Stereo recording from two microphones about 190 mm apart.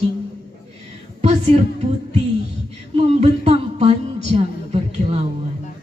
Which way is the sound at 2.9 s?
30° right (ahead or behind).